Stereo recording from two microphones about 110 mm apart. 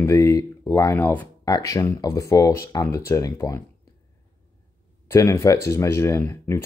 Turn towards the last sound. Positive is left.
turn(degrees=25)  # may be behind; listen again after turning